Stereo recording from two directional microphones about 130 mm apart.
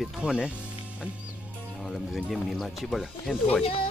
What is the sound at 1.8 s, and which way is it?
Speech, centre (ahead or behind).